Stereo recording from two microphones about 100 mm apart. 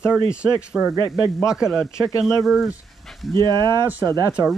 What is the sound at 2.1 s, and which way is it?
Speech, 25° left (ahead or behind).